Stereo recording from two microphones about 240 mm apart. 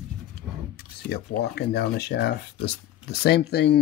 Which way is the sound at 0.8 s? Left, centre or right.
Left.